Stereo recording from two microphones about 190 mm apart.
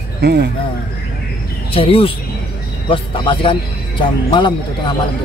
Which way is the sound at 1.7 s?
30° left (ahead or behind).